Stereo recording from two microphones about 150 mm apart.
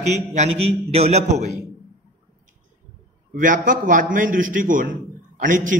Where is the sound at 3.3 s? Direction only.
60° right (ahead or behind).